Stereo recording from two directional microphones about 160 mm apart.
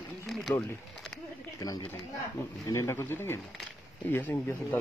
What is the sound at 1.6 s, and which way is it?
Speech, 25° left (ahead or behind).